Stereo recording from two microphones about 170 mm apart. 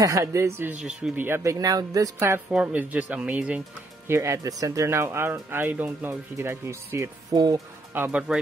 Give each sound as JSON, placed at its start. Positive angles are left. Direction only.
{"t": 0.0, "sound": "speech", "side_deg": -20}
{"t": 7.9, "sound": "speech", "side_deg": -10}